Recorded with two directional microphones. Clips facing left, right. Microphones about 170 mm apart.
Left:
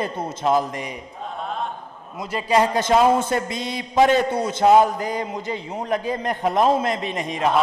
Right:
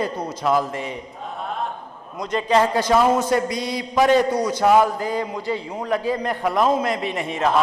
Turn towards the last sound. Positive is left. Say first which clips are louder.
# right 1 dB
turn(degrees=20)  # may be behind; listen again after turning